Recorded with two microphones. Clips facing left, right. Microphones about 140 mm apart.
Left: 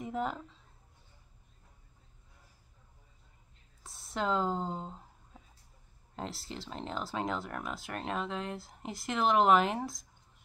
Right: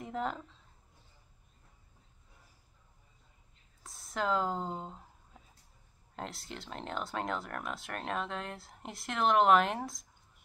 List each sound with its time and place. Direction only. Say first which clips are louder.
0.0 s a woman's voice: left 1 dB; centre (ahead or behind)
3.8 s speech: even; centre (ahead or behind)
6.1 s speech: left 2 dB; centre (ahead or behind)